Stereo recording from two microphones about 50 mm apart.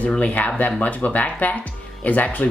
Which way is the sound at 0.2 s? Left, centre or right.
Left.